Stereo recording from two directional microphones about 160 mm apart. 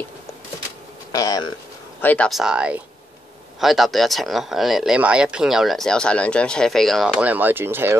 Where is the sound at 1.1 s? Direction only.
25° left (ahead or behind).